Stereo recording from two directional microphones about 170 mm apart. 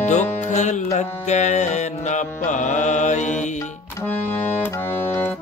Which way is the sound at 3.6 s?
15° left (ahead or behind).